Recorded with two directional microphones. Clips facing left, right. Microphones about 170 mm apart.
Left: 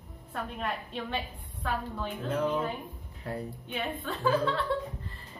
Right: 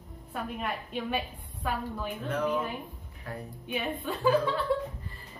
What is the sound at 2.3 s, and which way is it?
Speech, 30° left (ahead or behind).